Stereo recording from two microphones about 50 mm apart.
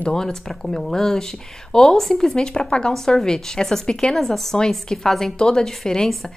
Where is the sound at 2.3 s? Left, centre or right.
Centre.